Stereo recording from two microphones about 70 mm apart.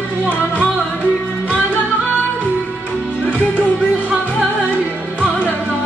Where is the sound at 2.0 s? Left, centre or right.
Left.